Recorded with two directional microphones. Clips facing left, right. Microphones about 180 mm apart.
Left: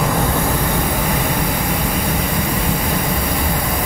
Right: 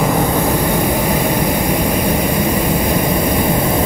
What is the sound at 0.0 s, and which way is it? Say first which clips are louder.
Vehicle: right 4 dB; 15° right (ahead or behind).